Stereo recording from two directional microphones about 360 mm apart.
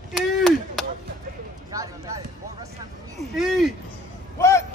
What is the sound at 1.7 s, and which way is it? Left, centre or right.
Run, centre.